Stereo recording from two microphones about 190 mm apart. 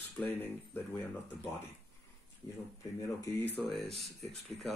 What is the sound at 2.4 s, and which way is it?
Speech, 15° left (ahead or behind).